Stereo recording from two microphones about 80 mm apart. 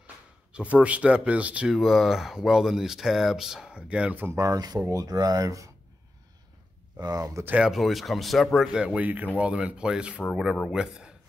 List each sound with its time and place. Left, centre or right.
0.0 s speech: centre
1.8 s speech: centre
4.2 s speech: right
7.0 s speech: right
7.6 s speech: centre
8.5 s speech: centre